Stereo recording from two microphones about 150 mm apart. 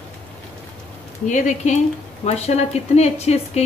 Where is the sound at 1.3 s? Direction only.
55° left (ahead or behind).